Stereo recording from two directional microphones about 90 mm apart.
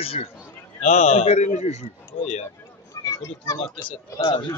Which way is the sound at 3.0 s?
30° left (ahead or behind).